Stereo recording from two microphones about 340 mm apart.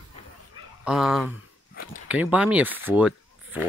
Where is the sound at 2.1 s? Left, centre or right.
Centre.